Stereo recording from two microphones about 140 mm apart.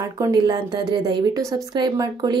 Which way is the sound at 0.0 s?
25° right (ahead or behind).